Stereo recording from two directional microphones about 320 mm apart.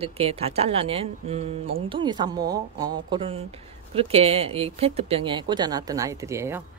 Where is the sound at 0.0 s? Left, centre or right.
Centre.